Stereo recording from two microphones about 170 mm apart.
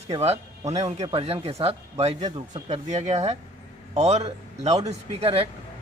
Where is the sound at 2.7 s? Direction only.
40° right (ahead or behind).